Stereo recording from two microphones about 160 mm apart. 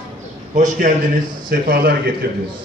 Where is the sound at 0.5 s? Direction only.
50° right (ahead or behind).